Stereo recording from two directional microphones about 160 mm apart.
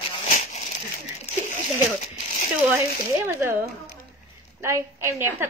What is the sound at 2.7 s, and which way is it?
Speech, 15° right (ahead or behind).